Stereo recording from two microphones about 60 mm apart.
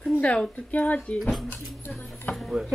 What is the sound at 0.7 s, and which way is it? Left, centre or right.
Speech, left.